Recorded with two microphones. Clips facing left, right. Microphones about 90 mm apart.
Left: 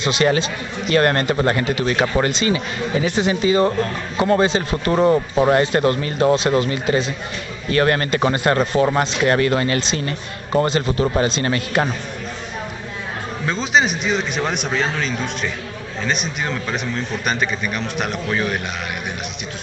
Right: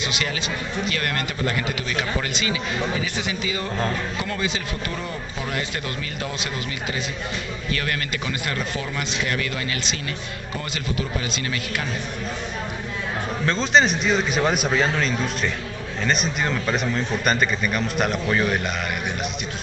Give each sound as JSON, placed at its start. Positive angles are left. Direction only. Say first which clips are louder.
{"t": 0.0, "sound": "a man's voice", "louder": "left 10 dB", "side_deg": 35}
{"t": 13.5, "sound": "a man's voice", "louder": "even", "side_deg": 5}